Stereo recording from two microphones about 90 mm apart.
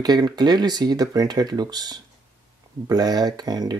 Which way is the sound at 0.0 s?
50° right (ahead or behind).